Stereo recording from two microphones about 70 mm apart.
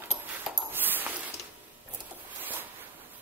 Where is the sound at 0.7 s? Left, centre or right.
Right.